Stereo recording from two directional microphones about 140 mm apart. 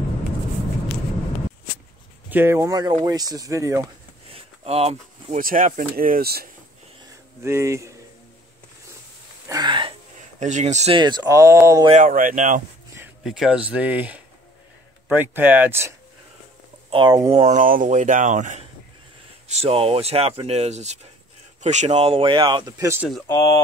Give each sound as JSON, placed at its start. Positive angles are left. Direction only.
{"t": 2.2, "sound": "speech", "side_deg": -15}
{"t": 4.3, "sound": "a sound", "side_deg": -45}
{"t": 5.4, "sound": "speech", "side_deg": -75}
{"t": 7.4, "sound": "speech", "side_deg": -20}
{"t": 9.5, "sound": "speech", "side_deg": -30}
{"t": 10.4, "sound": "speech", "side_deg": -55}
{"t": 11.0, "sound": "speech", "side_deg": -30}
{"t": 11.9, "sound": "speech", "side_deg": -70}
{"t": 13.2, "sound": "speech", "side_deg": -5}
{"t": 16.9, "sound": "speech", "side_deg": -30}
{"t": 17.3, "sound": "speech", "side_deg": -45}
{"t": 17.6, "sound": "speech", "side_deg": -75}
{"t": 19.4, "sound": "speech", "side_deg": -50}
{"t": 23.2, "sound": "speech", "side_deg": 25}